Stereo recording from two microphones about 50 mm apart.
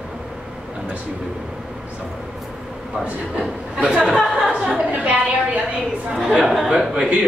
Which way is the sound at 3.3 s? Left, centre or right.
Centre.